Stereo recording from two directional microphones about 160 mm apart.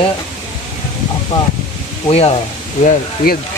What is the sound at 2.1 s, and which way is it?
Speech, 40° left (ahead or behind).